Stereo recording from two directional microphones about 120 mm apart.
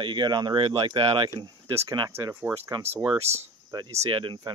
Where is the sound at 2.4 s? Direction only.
20° right (ahead or behind).